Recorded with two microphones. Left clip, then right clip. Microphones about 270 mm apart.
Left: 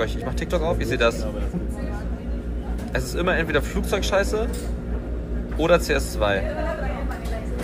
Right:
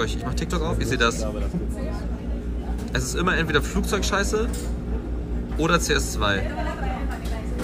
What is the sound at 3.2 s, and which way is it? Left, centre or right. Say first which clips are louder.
Speech: even; left.